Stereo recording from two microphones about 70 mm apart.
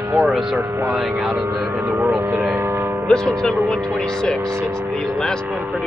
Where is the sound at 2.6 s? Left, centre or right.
Right.